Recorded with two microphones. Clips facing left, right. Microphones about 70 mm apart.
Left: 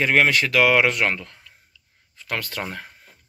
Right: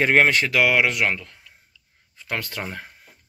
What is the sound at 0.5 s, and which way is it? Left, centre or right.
Speech, centre.